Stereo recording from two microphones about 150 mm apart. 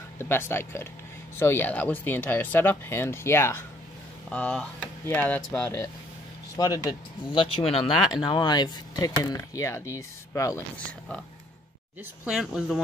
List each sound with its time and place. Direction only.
0.2 s speech: 15° left (ahead or behind)
4.3 s speech: 5° left (ahead or behind)
6.5 s speech: 25° left (ahead or behind)
12.3 s speech: 5° right (ahead or behind)